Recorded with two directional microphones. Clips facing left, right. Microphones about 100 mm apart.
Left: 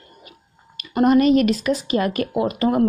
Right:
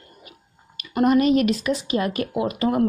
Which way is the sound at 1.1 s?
45° left (ahead or behind).